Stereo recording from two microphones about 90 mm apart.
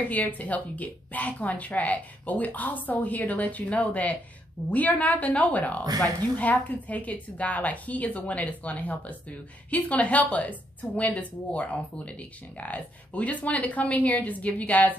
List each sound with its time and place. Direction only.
0.1 s speech: 15° left (ahead or behind)